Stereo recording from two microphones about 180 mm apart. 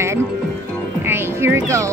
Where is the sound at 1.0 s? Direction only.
15° right (ahead or behind).